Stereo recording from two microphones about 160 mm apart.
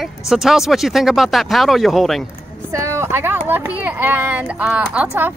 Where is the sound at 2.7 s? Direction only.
20° right (ahead or behind).